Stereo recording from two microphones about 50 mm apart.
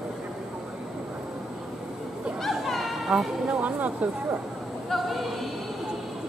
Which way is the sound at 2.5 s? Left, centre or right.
Centre.